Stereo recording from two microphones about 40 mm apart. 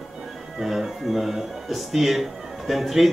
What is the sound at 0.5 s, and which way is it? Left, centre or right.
Speech, centre.